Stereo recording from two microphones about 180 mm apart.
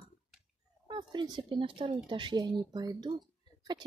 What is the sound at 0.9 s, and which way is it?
Speech, 25° right (ahead or behind).